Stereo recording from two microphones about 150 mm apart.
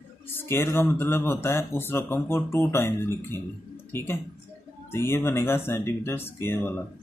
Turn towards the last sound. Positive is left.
turn(degrees=15)  # may be behind; listen again after turning